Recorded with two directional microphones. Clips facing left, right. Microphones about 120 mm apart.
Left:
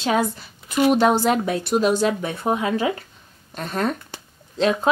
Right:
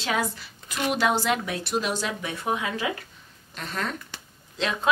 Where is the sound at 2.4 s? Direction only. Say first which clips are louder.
Left 6 dB; 35° left (ahead or behind).